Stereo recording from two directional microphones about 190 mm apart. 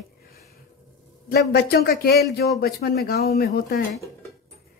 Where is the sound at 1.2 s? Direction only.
55° left (ahead or behind).